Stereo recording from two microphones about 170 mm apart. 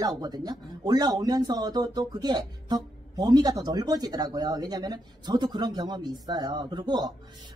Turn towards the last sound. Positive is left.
turn(degrees=-25)  # may be behind; listen again after turning